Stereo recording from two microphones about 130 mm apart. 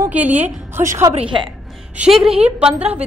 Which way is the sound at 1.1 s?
45° right (ahead or behind).